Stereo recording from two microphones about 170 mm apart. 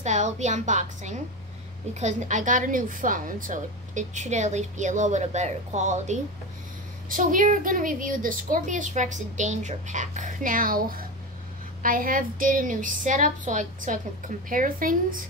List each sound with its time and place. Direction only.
0.0 s a woman's voice: 45° right (ahead or behind)